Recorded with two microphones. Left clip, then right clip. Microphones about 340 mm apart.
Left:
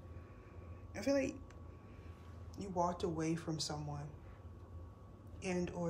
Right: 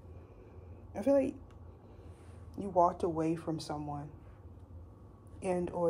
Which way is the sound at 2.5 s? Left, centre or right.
Centre.